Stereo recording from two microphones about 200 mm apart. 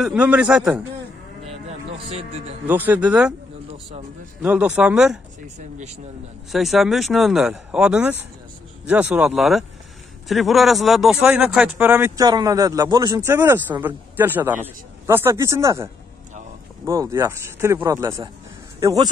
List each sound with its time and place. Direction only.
0.0 s speech: 5° right (ahead or behind)
2.6 s speech: 10° right (ahead or behind)
4.4 s speech: 5° right (ahead or behind)
6.5 s speech: centre (ahead or behind); by 19.0 s 15° right (ahead or behind)